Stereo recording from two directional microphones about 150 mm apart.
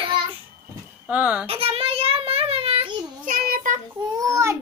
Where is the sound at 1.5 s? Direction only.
40° right (ahead or behind).